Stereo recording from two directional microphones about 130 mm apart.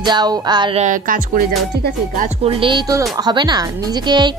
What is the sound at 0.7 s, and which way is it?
Speech, 70° right (ahead or behind).